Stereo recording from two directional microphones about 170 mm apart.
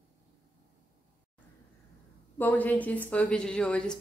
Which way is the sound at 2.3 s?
10° left (ahead or behind).